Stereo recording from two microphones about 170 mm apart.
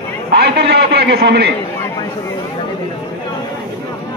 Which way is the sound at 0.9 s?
80° right.